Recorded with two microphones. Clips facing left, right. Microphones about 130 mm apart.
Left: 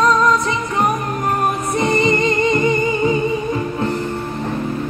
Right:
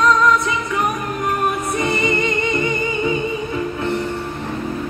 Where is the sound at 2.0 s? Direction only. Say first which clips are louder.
Left 4 dB; 35° left (ahead or behind).